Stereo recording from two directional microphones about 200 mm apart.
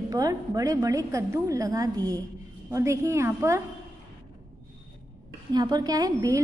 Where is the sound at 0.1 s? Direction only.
15° right (ahead or behind).